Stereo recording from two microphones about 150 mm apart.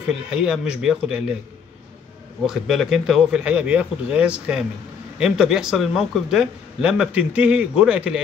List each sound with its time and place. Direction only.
0.1 s speech: 5° right (ahead or behind)
2.4 s speech: 5° right (ahead or behind)